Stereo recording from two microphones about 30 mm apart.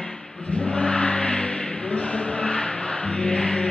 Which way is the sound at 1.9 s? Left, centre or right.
Left.